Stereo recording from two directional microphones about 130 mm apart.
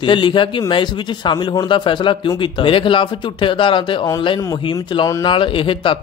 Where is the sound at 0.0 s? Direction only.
40° left (ahead or behind).